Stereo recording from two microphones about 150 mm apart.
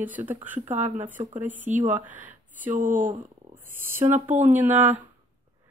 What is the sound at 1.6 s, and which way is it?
A woman's voice, 55° right (ahead or behind).